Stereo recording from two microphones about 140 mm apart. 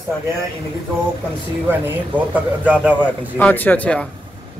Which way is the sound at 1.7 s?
10° right (ahead or behind).